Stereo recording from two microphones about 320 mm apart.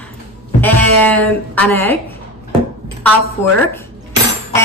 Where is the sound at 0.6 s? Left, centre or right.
Centre.